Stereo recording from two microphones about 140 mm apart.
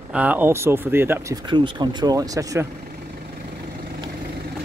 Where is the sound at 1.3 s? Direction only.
35° right (ahead or behind).